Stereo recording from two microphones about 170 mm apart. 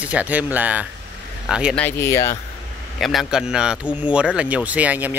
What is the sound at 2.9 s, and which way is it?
Speech, centre (ahead or behind).